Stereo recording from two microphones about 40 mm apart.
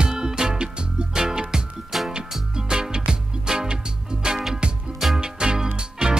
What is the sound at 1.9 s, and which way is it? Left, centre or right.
Music, centre.